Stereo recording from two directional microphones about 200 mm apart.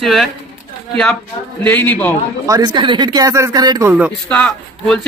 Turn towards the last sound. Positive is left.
turn(degrees=5)  # may be behind; listen again after turning